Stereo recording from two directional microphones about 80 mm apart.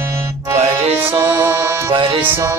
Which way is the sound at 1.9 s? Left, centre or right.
Right.